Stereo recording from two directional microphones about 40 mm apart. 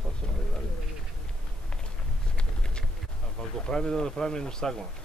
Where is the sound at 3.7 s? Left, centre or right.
Centre.